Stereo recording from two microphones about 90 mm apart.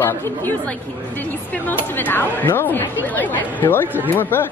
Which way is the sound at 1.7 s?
20° left (ahead or behind).